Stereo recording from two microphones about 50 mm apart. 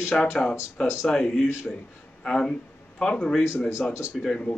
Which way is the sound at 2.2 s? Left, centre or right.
Centre.